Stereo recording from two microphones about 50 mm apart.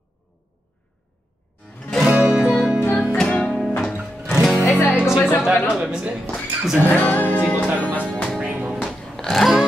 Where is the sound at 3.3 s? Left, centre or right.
Left.